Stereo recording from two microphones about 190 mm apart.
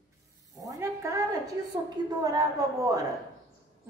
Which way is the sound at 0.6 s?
15° right (ahead or behind).